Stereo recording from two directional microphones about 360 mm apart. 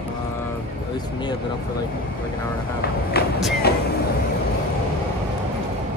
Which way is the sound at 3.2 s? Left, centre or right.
Left.